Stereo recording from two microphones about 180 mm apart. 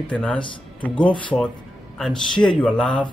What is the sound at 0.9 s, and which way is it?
Speech, 25° left (ahead or behind).